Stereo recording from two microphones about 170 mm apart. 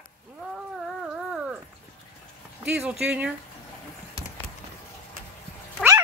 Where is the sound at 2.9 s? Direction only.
5° right (ahead or behind).